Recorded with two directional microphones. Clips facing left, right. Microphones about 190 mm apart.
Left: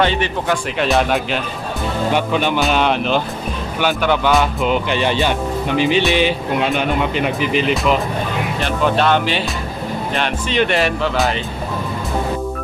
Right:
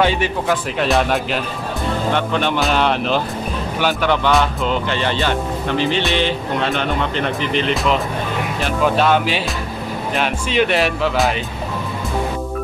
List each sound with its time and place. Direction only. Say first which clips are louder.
0.0 s speech: even; 5° right (ahead or behind)
4.6 s speech: left 2 dB; 15° left (ahead or behind); by 11.3 s centre (ahead or behind)